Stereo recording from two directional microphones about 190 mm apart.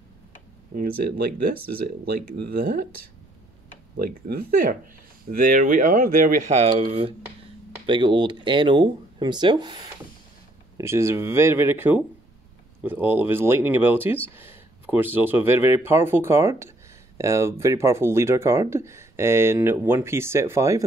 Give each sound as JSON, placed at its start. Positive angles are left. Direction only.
{"t": 0.7, "sound": "speech", "side_deg": -50}
{"t": 3.9, "sound": "speech", "side_deg": -55}